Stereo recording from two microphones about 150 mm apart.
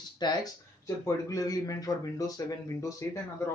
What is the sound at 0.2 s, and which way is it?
Speech, 25° left (ahead or behind).